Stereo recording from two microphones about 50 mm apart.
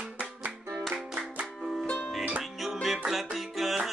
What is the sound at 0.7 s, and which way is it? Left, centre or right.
Music, centre.